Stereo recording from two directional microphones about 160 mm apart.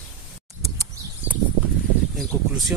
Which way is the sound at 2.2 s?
Centre (ahead or behind).